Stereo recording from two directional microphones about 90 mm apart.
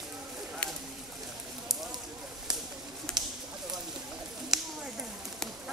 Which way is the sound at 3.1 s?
5° left (ahead or behind).